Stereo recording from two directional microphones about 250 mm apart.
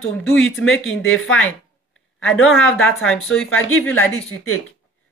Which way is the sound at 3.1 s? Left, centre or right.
Centre.